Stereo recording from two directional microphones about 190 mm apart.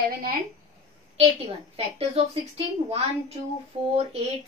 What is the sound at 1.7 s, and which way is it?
A woman's voice, 30° right (ahead or behind).